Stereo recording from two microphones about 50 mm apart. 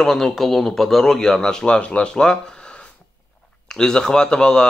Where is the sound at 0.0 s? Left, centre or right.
Centre.